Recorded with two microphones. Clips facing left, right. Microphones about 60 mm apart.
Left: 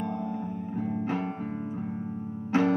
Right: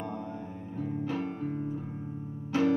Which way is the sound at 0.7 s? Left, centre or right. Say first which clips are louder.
Left 2 dB; left.